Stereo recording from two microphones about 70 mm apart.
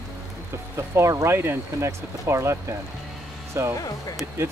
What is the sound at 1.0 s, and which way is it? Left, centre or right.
Speech, right.